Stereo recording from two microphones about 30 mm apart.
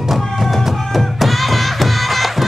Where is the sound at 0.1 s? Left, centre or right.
Centre.